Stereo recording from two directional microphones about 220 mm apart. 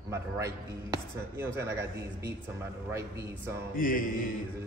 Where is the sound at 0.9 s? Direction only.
15° right (ahead or behind).